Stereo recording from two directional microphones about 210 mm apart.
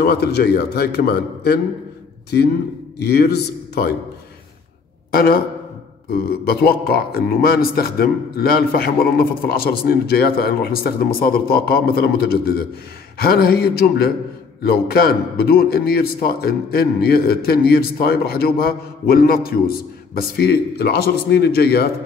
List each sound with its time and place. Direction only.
0.0 s a man's voice: 50° left (ahead or behind)
3.0 s a man's voice: 50° left (ahead or behind)
5.1 s a man's voice: 45° left (ahead or behind)